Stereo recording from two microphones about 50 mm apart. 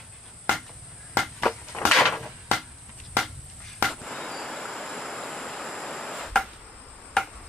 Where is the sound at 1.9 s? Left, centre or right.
Centre.